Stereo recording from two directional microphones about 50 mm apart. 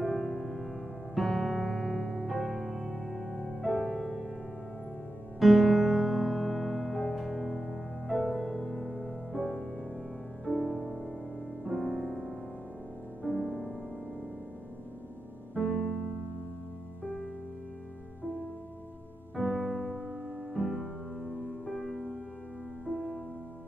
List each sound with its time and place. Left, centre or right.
0.0 s music: centre
5.4 s music: centre
11.6 s music: centre
15.5 s music: centre
19.3 s music: centre
22.8 s music: centre